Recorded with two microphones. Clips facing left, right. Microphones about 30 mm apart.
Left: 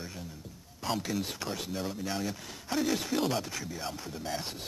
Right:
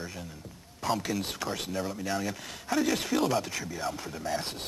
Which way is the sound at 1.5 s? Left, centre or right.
Centre.